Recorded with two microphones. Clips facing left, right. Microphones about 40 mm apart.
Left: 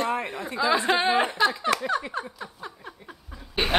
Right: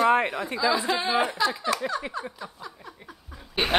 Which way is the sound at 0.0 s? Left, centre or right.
Right.